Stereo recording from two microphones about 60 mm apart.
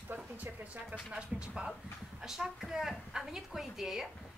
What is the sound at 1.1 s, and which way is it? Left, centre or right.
A woman's voice, centre.